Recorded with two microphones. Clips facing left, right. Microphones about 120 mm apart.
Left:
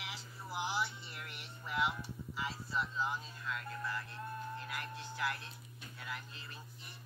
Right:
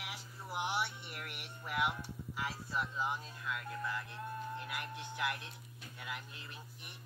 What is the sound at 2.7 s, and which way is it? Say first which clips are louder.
Speech: even; 10° right (ahead or behind).